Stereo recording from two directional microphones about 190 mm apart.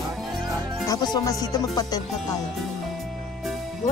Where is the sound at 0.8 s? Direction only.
20° left (ahead or behind).